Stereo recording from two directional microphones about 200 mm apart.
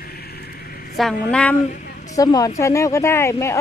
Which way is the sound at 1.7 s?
40° left (ahead or behind).